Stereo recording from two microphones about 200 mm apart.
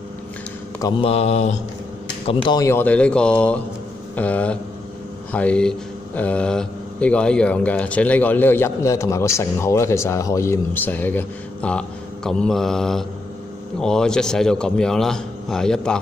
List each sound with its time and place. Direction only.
0.8 s mantra: 30° left (ahead or behind)
2.2 s a man's voice: 20° left (ahead or behind); by 16.0 s 5° left (ahead or behind)